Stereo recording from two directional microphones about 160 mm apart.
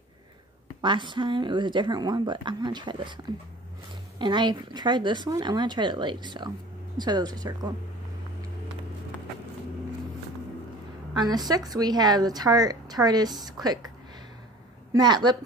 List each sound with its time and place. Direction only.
0.7 s speech: 30° right (ahead or behind)
4.2 s speech: 30° right (ahead or behind)
11.1 s a woman's voice: 25° right (ahead or behind)